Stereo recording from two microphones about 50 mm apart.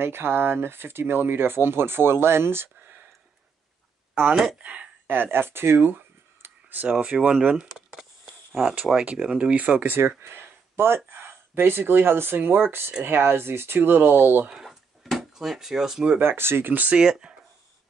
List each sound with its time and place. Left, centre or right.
0.0 s speech: right
4.1 s a sound: right
4.6 s speech: right
5.0 s speech: right
6.9 s speech: right
8.9 s speech: right
9.8 s speech: right
15.0 s speech: centre
16.2 s speech: right
16.9 s speech: centre